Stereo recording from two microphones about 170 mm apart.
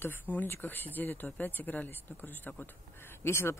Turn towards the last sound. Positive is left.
turn(degrees=15)  # may be behind; listen again after turning